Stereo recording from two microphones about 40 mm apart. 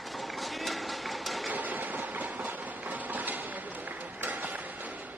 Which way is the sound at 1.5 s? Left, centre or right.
Right.